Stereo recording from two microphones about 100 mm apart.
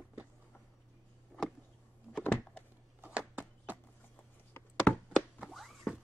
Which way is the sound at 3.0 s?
15° right (ahead or behind).